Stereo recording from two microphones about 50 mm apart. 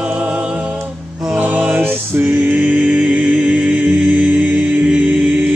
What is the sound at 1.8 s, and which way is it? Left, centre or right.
Music, right.